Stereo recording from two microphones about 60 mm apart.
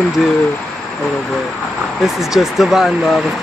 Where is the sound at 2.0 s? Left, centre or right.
Centre.